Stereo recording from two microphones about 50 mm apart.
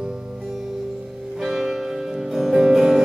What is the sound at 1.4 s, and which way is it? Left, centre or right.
Music, centre.